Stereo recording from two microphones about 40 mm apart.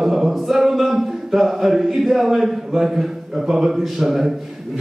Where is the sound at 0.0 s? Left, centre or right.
Centre.